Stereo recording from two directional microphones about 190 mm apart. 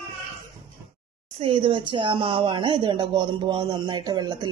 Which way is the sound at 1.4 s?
30° right (ahead or behind).